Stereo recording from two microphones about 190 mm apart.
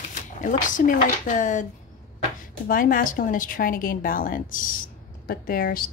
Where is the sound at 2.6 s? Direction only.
45° left (ahead or behind).